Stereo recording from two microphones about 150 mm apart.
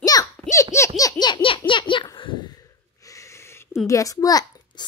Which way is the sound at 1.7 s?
35° left (ahead or behind).